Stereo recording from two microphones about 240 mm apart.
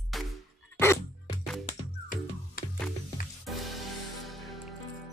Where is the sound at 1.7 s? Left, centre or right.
Left.